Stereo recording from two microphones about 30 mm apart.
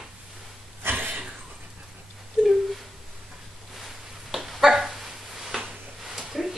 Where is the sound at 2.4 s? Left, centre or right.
Centre.